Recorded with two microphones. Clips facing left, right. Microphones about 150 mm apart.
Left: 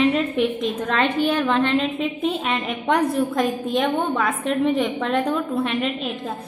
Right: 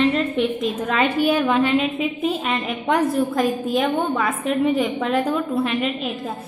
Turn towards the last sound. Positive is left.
turn(degrees=0)  # may be behind; listen again after turning